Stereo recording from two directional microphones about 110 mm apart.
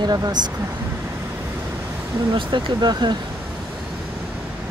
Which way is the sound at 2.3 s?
45° right (ahead or behind).